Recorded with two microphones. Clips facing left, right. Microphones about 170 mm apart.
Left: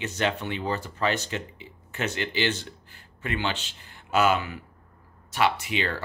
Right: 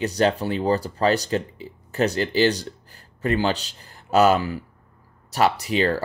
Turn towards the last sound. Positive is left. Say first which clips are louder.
# right 8 dB
turn(degrees=-40)  # may be behind; listen again after turning